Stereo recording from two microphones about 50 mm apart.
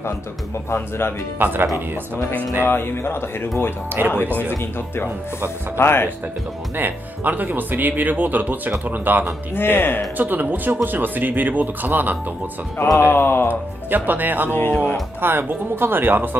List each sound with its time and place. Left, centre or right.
1.4 s speech: right
2.6 s speech: left
4.0 s speech: right
5.8 s speech: left
6.8 s speech: right
9.6 s speech: left
10.1 s speech: right
13.1 s speech: left
13.8 s speech: right
14.5 s speech: left
15.2 s speech: right